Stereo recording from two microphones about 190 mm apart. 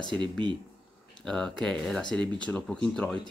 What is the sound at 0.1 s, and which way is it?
Speech, 25° right (ahead or behind).